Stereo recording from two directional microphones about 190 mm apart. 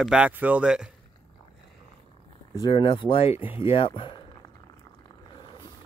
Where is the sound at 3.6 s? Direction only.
30° left (ahead or behind).